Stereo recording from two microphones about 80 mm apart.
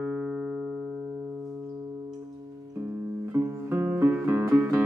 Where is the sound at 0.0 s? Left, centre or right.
Centre.